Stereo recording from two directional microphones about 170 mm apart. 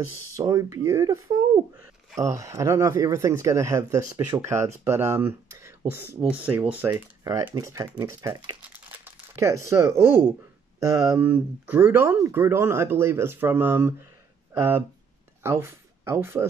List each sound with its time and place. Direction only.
0.4 s speech: 20° right (ahead or behind)
8.0 s crumpling: 20° right (ahead or behind)
9.7 s speech: 15° right (ahead or behind)